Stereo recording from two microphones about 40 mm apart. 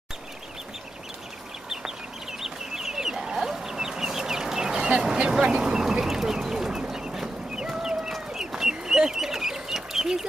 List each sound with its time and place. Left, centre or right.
1.7 s chicken: centre
5.1 s bird: right
7.7 s a sound: centre
8.4 s chicken: centre